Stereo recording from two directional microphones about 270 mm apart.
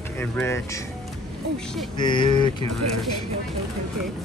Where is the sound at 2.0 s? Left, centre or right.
Centre.